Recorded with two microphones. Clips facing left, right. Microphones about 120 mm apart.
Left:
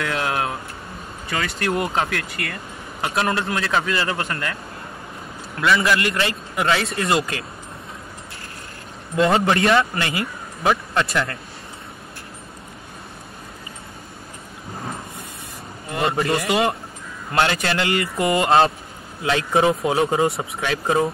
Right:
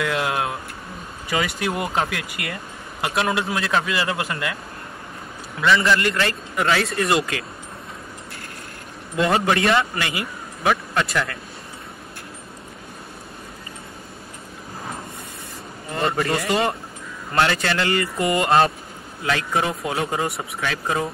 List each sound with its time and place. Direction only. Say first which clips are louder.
0.0 s a man's voice: even; 5° right (ahead or behind)
5.6 s a man's voice: even; 5° left (ahead or behind)
6.2 s speech: even; 25° left (ahead or behind)
9.1 s speech: left 2 dB; 25° left (ahead or behind)
15.9 s speech: left 1 dB; 25° left (ahead or behind)
17.4 s speech: even; 20° left (ahead or behind)